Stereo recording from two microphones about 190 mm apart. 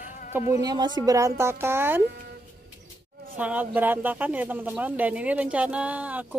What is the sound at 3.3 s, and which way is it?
Speech, 10° right (ahead or behind).